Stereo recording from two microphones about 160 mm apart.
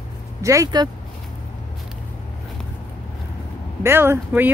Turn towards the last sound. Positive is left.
turn(degrees=-15)  # may be behind; listen again after turning